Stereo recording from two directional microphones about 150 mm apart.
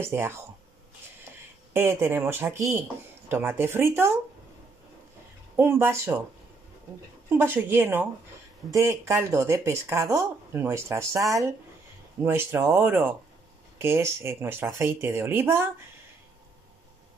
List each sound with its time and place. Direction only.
0.0 s speech: 15° right (ahead or behind)
1.7 s speech: 15° right (ahead or behind)
5.6 s speech: 15° right (ahead or behind)
7.2 s speech: 15° right (ahead or behind)